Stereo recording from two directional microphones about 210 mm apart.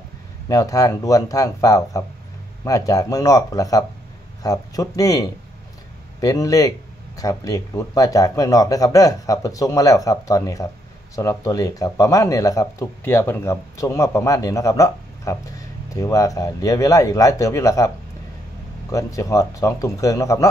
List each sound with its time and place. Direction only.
0.5 s speech: 15° left (ahead or behind)